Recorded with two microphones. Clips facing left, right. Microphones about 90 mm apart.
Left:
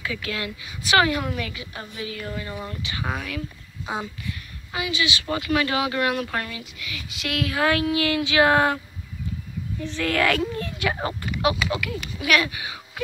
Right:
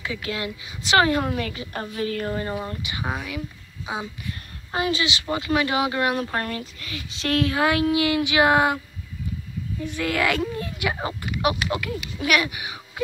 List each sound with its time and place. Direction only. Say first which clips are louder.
0.0 s a woman's voice: right 1 dB; 25° right (ahead or behind)
2.6 s speech: right 1 dB; 20° right (ahead or behind)
4.7 s a woman's voice: right 4 dB; 40° right (ahead or behind)
5.2 s speech: even; 20° right (ahead or behind)
6.4 s a woman's voice: right 4 dB; 40° right (ahead or behind)
7.8 s speech: right 2 dB; 20° right (ahead or behind)